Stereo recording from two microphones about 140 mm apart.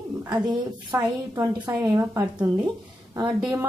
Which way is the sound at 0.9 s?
20° right (ahead or behind).